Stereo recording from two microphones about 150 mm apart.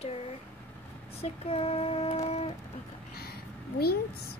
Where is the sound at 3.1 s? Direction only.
90° left.